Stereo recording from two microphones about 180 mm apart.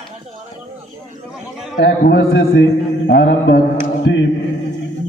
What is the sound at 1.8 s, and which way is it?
A man's voice, 65° left (ahead or behind).